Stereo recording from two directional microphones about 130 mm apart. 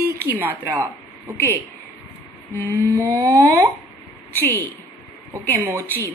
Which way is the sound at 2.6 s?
15° left (ahead or behind).